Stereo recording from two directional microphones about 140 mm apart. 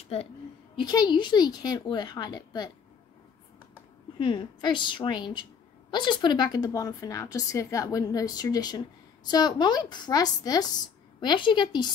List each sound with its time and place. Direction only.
0.7 s a woman's voice: 30° left (ahead or behind)
4.2 s a woman's voice: 35° left (ahead or behind)